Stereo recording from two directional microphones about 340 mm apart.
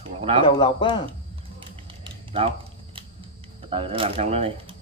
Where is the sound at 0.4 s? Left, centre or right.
Centre.